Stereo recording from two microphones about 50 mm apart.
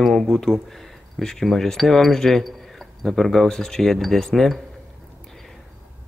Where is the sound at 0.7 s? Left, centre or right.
Centre.